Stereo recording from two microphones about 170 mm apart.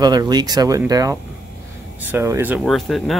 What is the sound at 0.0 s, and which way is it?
Speech, 25° right (ahead or behind).